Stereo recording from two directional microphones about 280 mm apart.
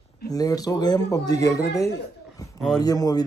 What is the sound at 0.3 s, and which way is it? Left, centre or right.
A man's voice, centre.